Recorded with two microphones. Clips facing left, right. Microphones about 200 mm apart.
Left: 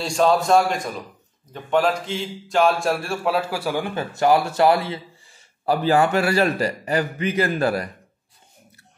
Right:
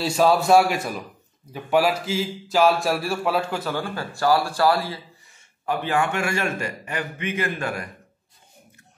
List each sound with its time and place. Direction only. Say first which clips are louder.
0.0 s a man's voice: even; 5° right (ahead or behind); by 5.4 s 25° left (ahead or behind)
5.7 s a man's voice: left 5 dB; 35° left (ahead or behind)